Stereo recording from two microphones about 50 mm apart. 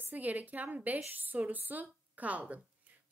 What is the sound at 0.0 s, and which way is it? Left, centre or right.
A woman's voice, right.